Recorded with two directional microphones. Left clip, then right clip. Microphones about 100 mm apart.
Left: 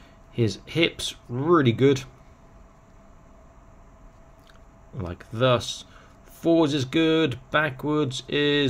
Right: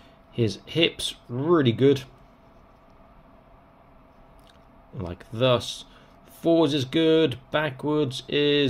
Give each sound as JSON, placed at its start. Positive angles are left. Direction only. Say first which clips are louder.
{"t": 0.3, "sound": "speech", "louder": "even", "side_deg": 20}
{"t": 4.9, "sound": "speech", "louder": "even", "side_deg": 20}